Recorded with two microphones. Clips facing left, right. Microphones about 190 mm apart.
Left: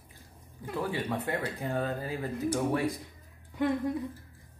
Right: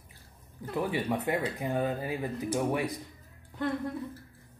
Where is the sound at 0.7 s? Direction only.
15° right (ahead or behind).